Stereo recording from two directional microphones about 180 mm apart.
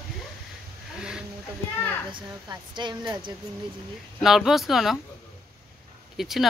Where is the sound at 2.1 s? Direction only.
25° right (ahead or behind).